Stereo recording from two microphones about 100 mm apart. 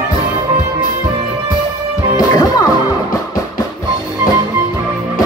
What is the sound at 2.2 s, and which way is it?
Music, 40° left (ahead or behind).